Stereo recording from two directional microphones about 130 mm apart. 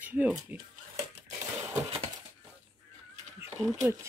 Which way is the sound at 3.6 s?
5° left (ahead or behind).